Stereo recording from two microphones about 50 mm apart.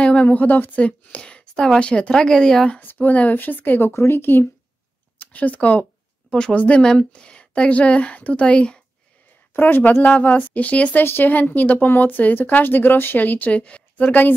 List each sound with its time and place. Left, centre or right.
0.0 s a woman's voice: left
2.8 s speech: left
3.9 s speech: left
5.2 s speech: left
6.3 s a woman's voice: centre
9.5 s speech: left
9.9 s speech: left
11.1 s speech: left